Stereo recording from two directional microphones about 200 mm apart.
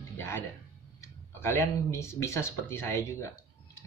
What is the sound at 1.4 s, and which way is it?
Speech, 15° left (ahead or behind).